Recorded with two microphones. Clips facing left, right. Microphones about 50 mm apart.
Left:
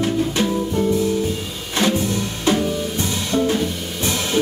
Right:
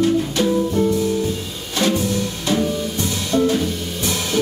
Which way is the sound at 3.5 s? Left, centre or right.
Left.